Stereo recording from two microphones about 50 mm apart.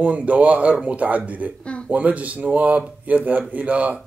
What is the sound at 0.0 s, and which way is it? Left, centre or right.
Speech, right.